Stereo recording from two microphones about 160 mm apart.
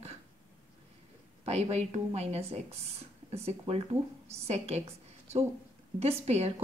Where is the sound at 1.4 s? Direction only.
40° right (ahead or behind).